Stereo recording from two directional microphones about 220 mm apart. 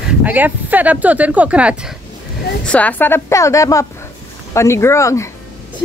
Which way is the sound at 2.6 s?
5° left (ahead or behind).